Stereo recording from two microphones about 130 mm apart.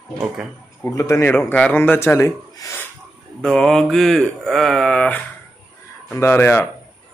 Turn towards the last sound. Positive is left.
turn(degrees=20)  # may be behind; listen again after turning